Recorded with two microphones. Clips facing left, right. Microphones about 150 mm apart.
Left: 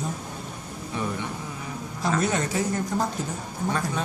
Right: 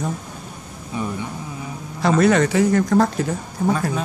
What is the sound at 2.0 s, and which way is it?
Speech, 75° right (ahead or behind).